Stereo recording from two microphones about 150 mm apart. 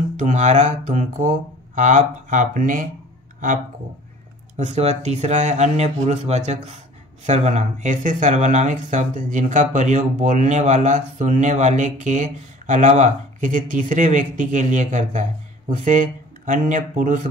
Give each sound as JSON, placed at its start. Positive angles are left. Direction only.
{"t": 0.2, "sound": "speech", "side_deg": -50}
{"t": 4.6, "sound": "speech", "side_deg": -50}